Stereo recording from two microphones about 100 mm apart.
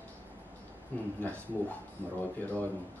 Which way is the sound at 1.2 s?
15° left (ahead or behind).